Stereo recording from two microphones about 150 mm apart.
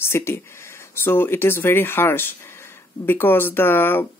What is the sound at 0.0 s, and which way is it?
Speech, 15° left (ahead or behind).